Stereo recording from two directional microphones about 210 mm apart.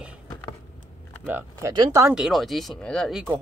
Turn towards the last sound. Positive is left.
turn(degrees=0)  # may be behind; listen again after turning